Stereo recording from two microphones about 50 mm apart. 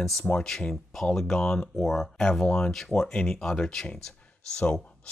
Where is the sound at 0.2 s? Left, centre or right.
Centre.